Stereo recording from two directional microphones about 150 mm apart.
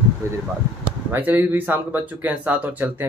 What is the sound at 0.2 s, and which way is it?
Speech, 20° right (ahead or behind).